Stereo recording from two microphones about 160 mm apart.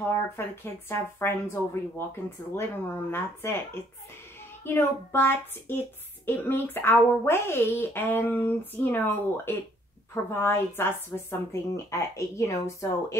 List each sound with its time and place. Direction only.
0.1 s a woman's voice: 15° left (ahead or behind)
4.6 s a woman's voice: 15° left (ahead or behind)